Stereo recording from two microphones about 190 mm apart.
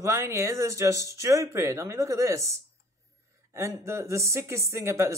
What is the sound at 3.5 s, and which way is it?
Speech, 15° right (ahead or behind).